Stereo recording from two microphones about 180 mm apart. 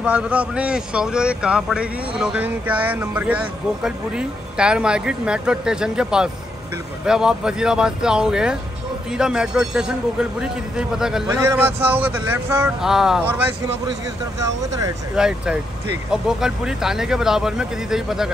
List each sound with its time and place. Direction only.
0.0 s speech: 5° right (ahead or behind)
11.2 s a man's voice: 15° right (ahead or behind)
14.4 s a man's voice: 20° right (ahead or behind)
15.1 s speech: 5° right (ahead or behind)